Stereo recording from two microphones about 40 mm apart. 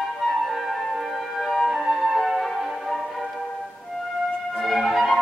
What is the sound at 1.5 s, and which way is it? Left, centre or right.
Music, centre.